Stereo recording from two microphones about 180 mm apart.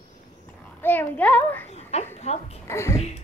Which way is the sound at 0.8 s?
10° left (ahead or behind).